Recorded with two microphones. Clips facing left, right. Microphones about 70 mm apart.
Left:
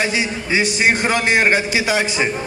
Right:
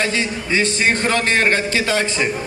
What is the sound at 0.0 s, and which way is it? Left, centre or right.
A man's voice, centre.